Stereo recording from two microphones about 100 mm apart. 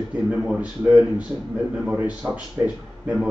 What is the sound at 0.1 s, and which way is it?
Speech, 10° right (ahead or behind).